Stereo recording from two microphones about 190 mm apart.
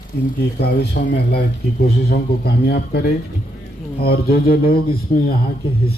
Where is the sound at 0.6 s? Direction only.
60° left (ahead or behind).